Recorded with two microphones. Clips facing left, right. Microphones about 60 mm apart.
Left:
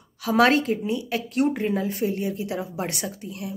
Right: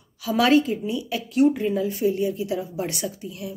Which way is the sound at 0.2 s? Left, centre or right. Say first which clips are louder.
Even; left.